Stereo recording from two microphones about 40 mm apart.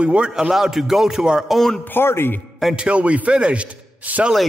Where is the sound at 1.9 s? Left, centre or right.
Left.